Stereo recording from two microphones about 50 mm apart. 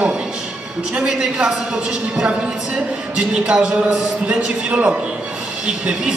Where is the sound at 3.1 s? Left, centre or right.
Right.